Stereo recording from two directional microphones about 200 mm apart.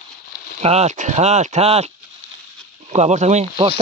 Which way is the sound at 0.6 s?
30° right (ahead or behind).